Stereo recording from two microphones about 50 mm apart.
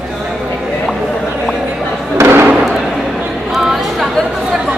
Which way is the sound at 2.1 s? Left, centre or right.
Right.